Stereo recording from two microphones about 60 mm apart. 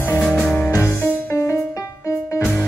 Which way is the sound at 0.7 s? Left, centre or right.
Left.